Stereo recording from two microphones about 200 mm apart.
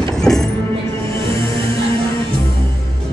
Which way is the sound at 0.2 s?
5° left (ahead or behind).